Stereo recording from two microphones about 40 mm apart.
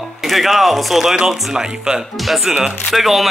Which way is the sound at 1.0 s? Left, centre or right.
Centre.